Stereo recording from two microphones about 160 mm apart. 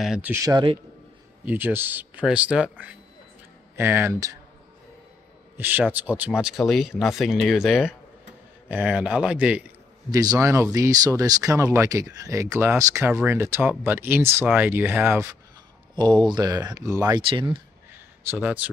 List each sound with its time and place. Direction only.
0.0 s speech: 5° right (ahead or behind)
0.3 s speech: 20° right (ahead or behind)
1.4 s speech: 10° right (ahead or behind)
5.6 s speech: 10° right (ahead or behind)
10.1 s speech: 20° right (ahead or behind)
15.9 s speech: 30° right (ahead or behind)
18.2 s speech: 15° right (ahead or behind)